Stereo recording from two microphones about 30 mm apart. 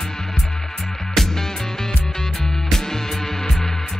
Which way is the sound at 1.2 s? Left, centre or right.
Centre.